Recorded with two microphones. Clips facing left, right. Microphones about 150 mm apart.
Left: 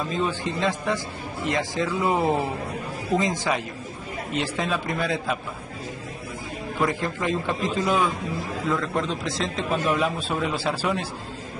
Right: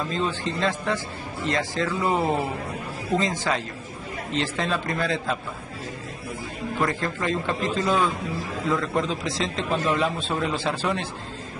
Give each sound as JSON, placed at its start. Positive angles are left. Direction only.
{"t": 0.1, "sound": "speech", "side_deg": 15}
{"t": 6.9, "sound": "speech", "side_deg": 15}
{"t": 8.6, "sound": "a man's voice", "side_deg": 0}